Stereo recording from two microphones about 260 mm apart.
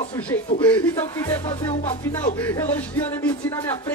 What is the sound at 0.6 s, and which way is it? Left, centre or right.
Speech, centre.